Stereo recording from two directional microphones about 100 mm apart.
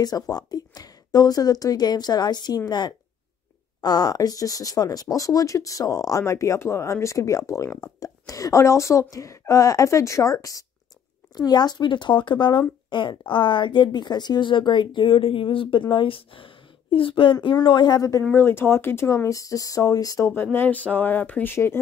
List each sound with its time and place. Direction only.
0.0 s a woman's voice: 40° left (ahead or behind)
18.3 s speech: 25° left (ahead or behind)
20.5 s speech: 15° left (ahead or behind)